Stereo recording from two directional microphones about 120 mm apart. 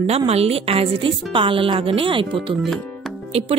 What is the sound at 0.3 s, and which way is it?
A woman's voice, 55° right (ahead or behind).